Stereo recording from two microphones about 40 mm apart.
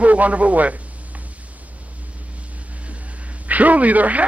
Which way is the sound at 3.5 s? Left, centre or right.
Right.